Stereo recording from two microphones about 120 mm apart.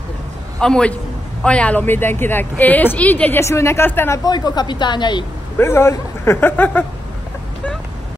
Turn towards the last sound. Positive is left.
turn(degrees=15)  # may be behind; listen again after turning